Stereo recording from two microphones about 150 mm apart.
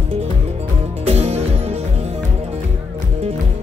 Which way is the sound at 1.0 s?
45° right (ahead or behind).